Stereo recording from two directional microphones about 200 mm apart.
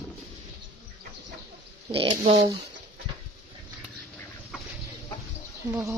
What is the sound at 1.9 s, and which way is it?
Speech, 30° right (ahead or behind).